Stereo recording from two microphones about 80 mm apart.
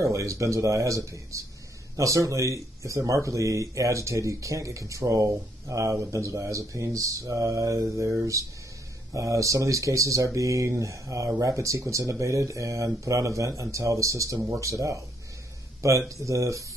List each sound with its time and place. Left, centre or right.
0.0 s speech: right
16.1 s speech: right